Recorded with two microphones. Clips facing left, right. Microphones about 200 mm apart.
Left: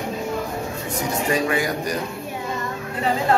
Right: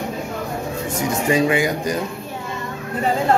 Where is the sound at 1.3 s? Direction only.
25° right (ahead or behind).